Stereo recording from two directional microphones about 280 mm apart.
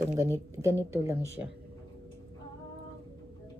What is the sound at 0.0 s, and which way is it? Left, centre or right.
Speech, centre.